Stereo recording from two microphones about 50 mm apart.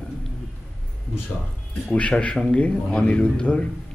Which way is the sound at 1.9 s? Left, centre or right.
Left.